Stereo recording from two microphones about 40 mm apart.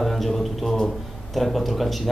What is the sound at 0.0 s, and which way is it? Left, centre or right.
A man's voice, centre.